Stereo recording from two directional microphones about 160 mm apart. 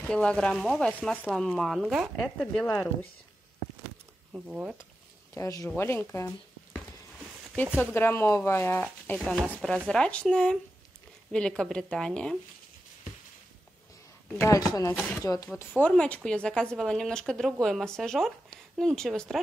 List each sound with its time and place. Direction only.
0.0 s speech: 5° left (ahead or behind)
2.6 s speech: 10° left (ahead or behind)
4.3 s speech: 10° right (ahead or behind)
5.3 s speech: 20° left (ahead or behind)
14.3 s speech: 20° left (ahead or behind)
15.8 s speech: 5° left (ahead or behind)